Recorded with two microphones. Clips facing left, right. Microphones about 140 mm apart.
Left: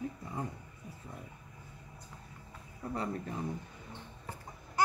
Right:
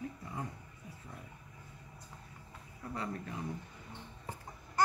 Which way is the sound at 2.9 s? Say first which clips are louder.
Left 3 dB; 35° left (ahead or behind).